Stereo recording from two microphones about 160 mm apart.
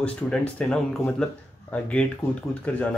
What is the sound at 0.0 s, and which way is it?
Speech, 5° left (ahead or behind).